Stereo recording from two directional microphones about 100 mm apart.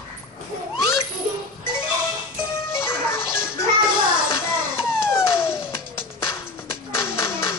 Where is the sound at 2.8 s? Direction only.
25° left (ahead or behind).